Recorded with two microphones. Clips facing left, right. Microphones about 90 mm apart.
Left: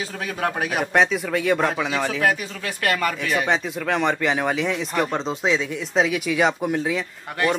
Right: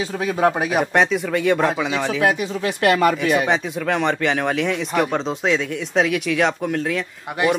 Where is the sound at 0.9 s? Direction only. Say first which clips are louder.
Left 2 dB; centre (ahead or behind).